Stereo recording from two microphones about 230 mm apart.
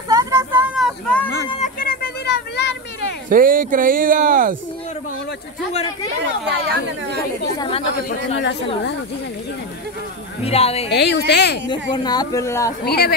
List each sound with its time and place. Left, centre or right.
0.1 s a sound: centre
1.6 s a sound: left
3.3 s speech: right
6.4 s speech: right
7.5 s a woman's voice: left
10.4 s a woman's voice: left
10.9 s speech: left
11.9 s speech: centre
12.8 s speech: left